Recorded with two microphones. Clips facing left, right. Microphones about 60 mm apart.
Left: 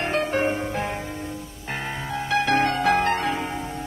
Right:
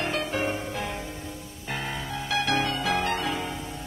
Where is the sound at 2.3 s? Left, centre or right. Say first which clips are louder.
Left 5 dB; left.